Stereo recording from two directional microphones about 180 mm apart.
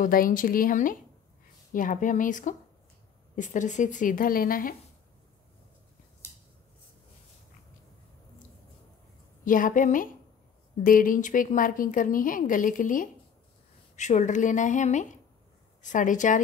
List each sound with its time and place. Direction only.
0.0 s a woman's voice: 50° left (ahead or behind)
6.2 s a sound: 15° left (ahead or behind)
9.4 s a woman's voice: 50° left (ahead or behind)